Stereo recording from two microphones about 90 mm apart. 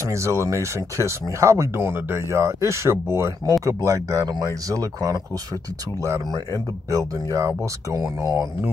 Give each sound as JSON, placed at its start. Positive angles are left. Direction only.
{"t": 0.0, "sound": "speech", "side_deg": -35}
{"t": 6.2, "sound": "speech", "side_deg": -45}